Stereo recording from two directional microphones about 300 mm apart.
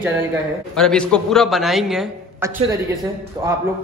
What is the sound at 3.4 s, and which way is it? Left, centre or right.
Speech, centre.